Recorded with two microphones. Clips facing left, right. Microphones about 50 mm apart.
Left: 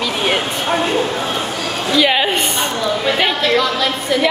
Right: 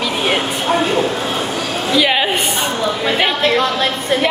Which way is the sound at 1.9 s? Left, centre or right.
Centre.